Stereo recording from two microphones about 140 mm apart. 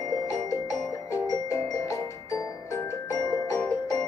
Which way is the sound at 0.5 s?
25° left (ahead or behind).